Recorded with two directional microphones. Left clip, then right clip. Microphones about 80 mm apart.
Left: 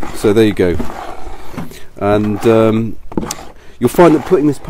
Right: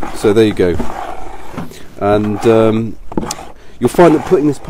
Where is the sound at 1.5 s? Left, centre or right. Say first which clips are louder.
Even; left.